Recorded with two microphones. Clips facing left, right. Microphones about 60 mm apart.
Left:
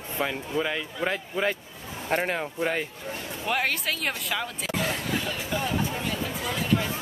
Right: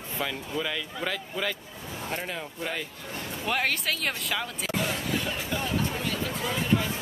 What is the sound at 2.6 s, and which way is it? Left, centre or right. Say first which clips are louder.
Speech: left 5 dB; left.